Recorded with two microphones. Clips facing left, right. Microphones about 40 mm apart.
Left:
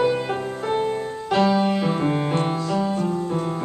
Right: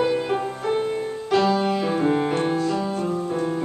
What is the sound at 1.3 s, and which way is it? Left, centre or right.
Music, centre.